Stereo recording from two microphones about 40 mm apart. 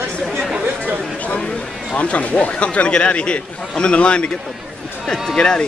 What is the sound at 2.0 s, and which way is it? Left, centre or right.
Speech, left.